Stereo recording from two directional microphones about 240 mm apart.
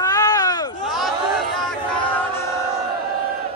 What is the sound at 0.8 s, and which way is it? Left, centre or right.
Chatter, centre.